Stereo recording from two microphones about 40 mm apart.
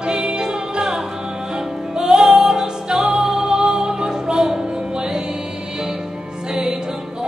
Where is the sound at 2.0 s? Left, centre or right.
Centre.